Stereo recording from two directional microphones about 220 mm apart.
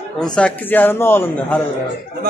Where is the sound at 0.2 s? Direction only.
5° left (ahead or behind).